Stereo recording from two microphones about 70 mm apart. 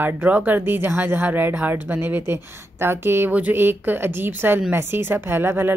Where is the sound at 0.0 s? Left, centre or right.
Right.